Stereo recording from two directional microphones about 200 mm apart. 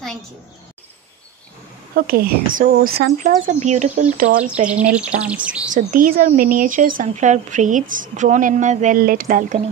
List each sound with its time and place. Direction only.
2.0 s speech: 50° right (ahead or behind)
3.5 s speech: 35° right (ahead or behind)
4.9 s speech: 5° right (ahead or behind)
5.7 s speech: 40° right (ahead or behind)